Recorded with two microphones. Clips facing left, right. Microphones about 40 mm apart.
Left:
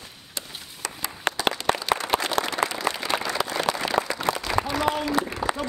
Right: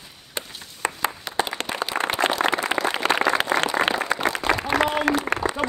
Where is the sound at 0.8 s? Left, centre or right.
Right.